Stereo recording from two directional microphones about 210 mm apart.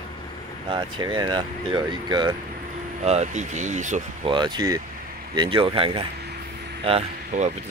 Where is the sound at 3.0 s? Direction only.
30° right (ahead or behind).